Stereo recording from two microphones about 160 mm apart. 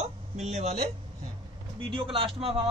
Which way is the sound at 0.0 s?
45° right (ahead or behind).